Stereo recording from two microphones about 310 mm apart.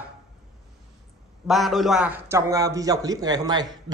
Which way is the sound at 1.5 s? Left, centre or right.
Centre.